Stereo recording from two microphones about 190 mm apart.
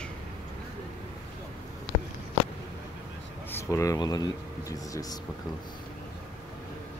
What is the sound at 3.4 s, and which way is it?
Speech, 15° left (ahead or behind).